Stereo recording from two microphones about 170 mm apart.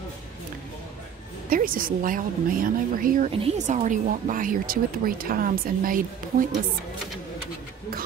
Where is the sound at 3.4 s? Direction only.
40° right (ahead or behind).